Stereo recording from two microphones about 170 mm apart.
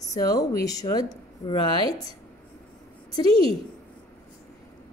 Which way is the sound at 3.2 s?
35° right (ahead or behind).